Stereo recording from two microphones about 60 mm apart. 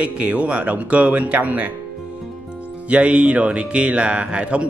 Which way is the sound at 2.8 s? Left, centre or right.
Centre.